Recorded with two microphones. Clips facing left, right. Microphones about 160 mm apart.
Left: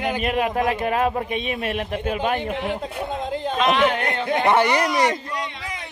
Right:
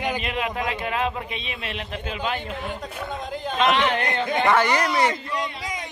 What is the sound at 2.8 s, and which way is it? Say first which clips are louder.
Speech: left 4 dB; 25° left (ahead or behind).